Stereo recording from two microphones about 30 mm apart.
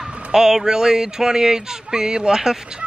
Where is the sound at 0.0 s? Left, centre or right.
Centre.